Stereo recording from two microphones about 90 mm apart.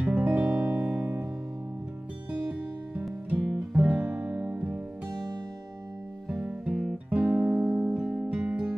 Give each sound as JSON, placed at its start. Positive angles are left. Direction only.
{"t": 0.0, "sound": "music", "side_deg": -15}
{"t": 3.0, "sound": "music", "side_deg": -15}
{"t": 6.2, "sound": "music", "side_deg": -5}
{"t": 7.2, "sound": "music", "side_deg": -25}